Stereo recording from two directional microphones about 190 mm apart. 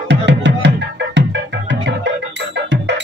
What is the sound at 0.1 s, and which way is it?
Music, 70° right (ahead or behind).